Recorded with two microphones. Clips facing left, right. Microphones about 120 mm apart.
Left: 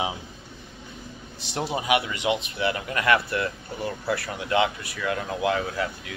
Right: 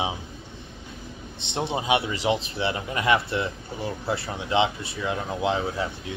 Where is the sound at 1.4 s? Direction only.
25° right (ahead or behind).